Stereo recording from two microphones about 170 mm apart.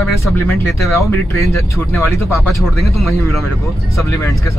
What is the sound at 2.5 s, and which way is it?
Music, centre (ahead or behind).